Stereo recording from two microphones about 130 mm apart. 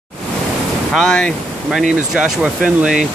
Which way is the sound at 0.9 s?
5° left (ahead or behind).